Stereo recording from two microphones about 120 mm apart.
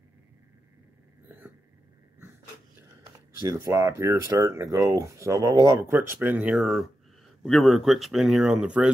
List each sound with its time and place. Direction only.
3.4 s speech: 25° right (ahead or behind); by 8.9 s 10° right (ahead or behind)